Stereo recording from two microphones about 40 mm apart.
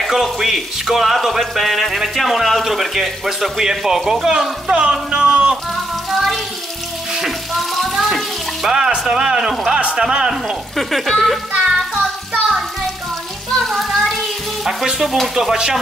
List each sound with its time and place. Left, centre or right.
0.0 s speech: centre
4.8 s music: right
7.2 s frying: centre
8.6 s speech: centre
10.8 s speech: centre
11.6 s music: centre
12.0 s music: centre
13.7 s music: centre
14.6 s frying: centre
15.3 s speech: centre